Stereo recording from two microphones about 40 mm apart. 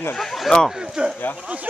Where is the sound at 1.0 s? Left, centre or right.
Right.